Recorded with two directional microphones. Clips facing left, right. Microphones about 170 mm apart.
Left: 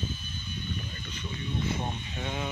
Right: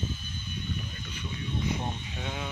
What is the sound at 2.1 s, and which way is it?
Speech, centre (ahead or behind).